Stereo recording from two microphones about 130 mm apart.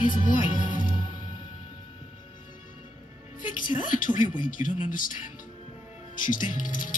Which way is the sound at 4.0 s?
90° left.